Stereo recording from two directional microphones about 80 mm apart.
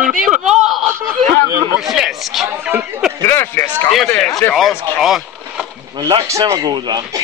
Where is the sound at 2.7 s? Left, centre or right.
Centre.